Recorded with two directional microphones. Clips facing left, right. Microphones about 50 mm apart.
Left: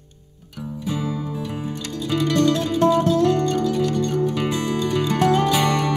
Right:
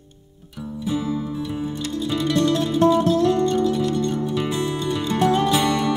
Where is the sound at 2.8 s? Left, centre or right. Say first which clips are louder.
Left 1 dB; left.